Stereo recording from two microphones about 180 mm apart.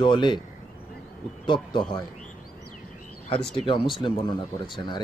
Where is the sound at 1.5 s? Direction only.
25° left (ahead or behind).